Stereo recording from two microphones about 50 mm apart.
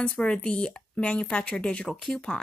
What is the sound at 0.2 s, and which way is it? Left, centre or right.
Speech, centre.